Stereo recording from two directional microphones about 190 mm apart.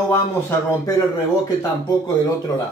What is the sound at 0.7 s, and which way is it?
Speech, 20° left (ahead or behind).